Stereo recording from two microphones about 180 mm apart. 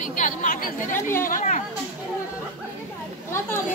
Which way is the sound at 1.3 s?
45° left (ahead or behind).